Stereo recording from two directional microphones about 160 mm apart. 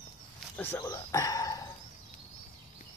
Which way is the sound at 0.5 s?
15° left (ahead or behind).